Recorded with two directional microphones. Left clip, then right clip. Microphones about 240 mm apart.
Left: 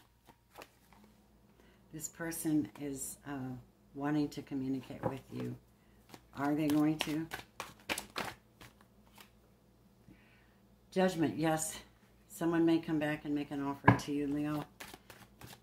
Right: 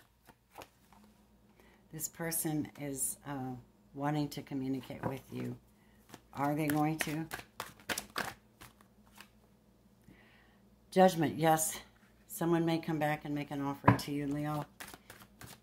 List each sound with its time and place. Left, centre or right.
1.9 s speech: right
7.0 s shuffling cards: centre
10.9 s speech: right